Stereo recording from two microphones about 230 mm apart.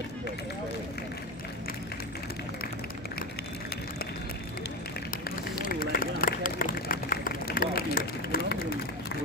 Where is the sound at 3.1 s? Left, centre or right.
Left.